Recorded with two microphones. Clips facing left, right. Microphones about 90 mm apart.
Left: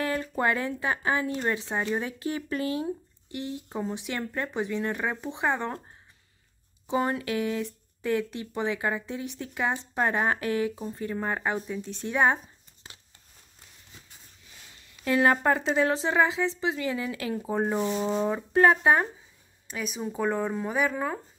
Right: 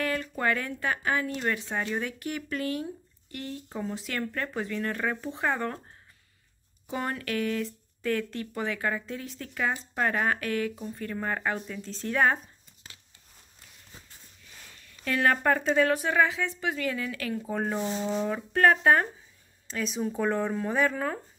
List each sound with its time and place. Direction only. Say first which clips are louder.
0.0 s speech: left 2 dB; 20° left (ahead or behind)
6.9 s speech: left 5 dB; 20° left (ahead or behind)
12.8 s a sound: left 2 dB; 25° left (ahead or behind)
14.9 s speech: left 3 dB; 20° left (ahead or behind)
19.7 s speech: right 2 dB; 5° left (ahead or behind)